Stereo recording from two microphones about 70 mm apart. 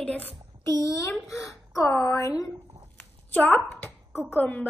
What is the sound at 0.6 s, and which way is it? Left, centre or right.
Speech, left.